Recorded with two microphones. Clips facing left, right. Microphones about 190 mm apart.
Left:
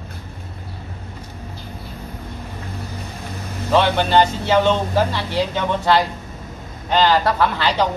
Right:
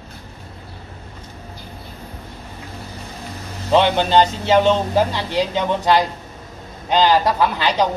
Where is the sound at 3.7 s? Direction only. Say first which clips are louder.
Right 1 dB; 20° right (ahead or behind).